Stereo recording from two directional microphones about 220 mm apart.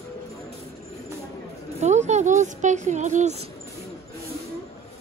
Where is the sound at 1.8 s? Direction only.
30° right (ahead or behind).